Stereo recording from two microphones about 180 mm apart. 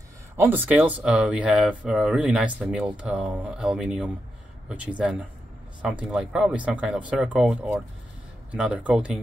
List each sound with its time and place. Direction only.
0.4 s speech: 10° right (ahead or behind)